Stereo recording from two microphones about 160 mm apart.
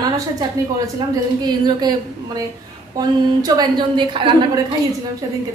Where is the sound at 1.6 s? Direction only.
25° right (ahead or behind).